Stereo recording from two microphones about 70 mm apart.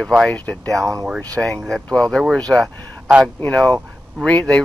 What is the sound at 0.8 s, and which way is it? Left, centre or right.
Speech, right.